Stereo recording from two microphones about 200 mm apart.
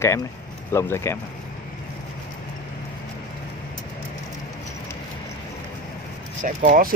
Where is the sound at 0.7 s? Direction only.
15° left (ahead or behind).